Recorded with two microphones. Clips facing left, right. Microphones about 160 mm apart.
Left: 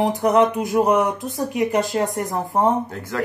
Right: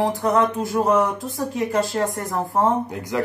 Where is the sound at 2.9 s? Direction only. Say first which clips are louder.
Right 3 dB; 15° right (ahead or behind).